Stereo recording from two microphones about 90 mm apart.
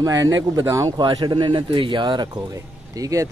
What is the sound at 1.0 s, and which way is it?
Speech, 60° right (ahead or behind).